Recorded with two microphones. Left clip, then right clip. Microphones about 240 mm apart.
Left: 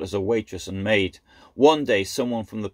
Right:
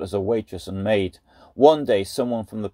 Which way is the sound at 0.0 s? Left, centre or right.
Centre.